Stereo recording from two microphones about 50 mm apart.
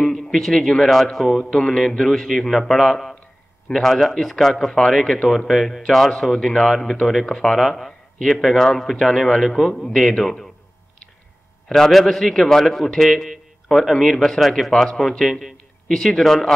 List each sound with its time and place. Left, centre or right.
0.0 s a man's voice: centre
1.4 s a man's voice: centre
5.5 s a man's voice: centre
5.8 s a man's voice: centre
11.7 s a man's voice: centre